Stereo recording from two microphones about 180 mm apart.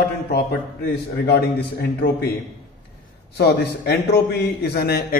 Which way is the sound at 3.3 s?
65° left (ahead or behind).